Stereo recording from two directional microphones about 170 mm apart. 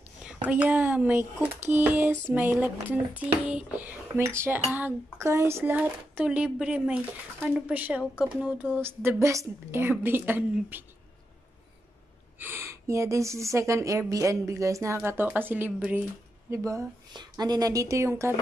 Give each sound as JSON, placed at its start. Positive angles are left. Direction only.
{"t": 0.2, "sound": "speech", "side_deg": -5}
{"t": 12.4, "sound": "a woman's voice", "side_deg": -15}